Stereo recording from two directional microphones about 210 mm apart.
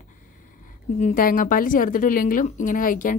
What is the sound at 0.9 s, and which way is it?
A woman's voice, 35° left (ahead or behind).